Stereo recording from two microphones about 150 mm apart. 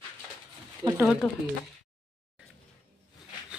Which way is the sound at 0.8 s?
30° right (ahead or behind).